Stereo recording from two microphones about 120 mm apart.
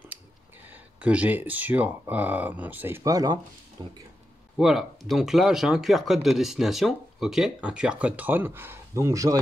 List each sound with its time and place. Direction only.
0.7 s speech: 10° right (ahead or behind)
3.0 s speech: 30° right (ahead or behind)
4.6 s speech: 5° right (ahead or behind); by 9.4 s 30° right (ahead or behind)